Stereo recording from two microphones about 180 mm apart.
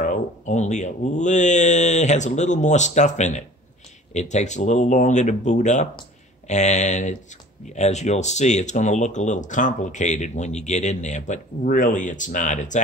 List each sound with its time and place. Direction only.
0.0 s speech: 45° left (ahead or behind)